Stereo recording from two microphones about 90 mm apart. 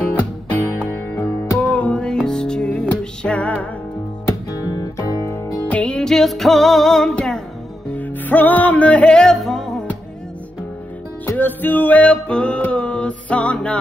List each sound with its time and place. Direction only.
1.6 s music: 15° left (ahead or behind)
4.3 s music: 40° left (ahead or behind)
5.7 s music: 10° left (ahead or behind)
7.9 s music: 20° left (ahead or behind)
11.2 s music: 20° left (ahead or behind)